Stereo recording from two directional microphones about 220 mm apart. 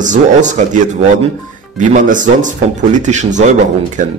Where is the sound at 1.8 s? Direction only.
35° right (ahead or behind).